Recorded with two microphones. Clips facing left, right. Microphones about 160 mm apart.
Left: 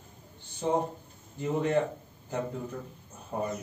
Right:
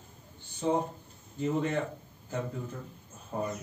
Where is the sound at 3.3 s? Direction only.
40° left (ahead or behind).